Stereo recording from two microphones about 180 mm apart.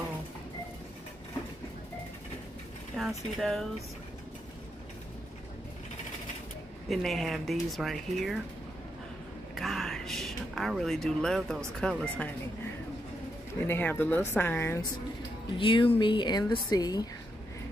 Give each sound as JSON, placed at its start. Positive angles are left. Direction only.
{"t": 3.0, "sound": "speech", "side_deg": 0}
{"t": 6.9, "sound": "speech", "side_deg": 0}
{"t": 9.6, "sound": "a sound", "side_deg": 0}
{"t": 11.8, "sound": "speech", "side_deg": 5}
{"t": 13.6, "sound": "speech", "side_deg": 10}
{"t": 15.5, "sound": "speech", "side_deg": 30}